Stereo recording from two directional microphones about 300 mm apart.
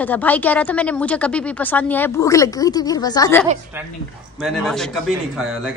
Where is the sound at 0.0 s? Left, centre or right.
Centre.